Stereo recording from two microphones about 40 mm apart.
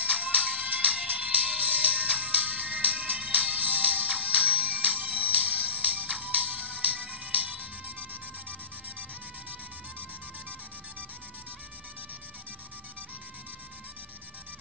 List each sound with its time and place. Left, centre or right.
0.1 s music: right